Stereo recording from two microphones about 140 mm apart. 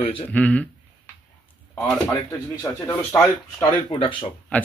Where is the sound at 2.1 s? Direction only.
25° left (ahead or behind).